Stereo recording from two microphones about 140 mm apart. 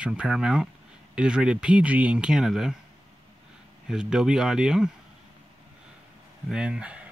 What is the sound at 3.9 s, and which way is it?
Speech, 5° right (ahead or behind).